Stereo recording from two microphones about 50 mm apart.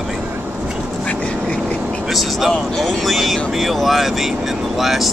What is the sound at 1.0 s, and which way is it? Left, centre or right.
Vehicle, left.